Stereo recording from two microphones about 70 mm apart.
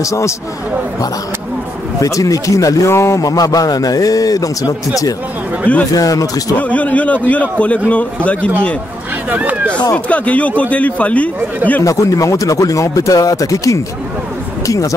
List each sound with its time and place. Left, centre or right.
0.0 s speech: left
2.0 s a man's voice: left
5.9 s a man's voice: left
6.5 s a man's voice: left
9.3 s speech: right
9.9 s a man's voice: centre
11.8 s speech: left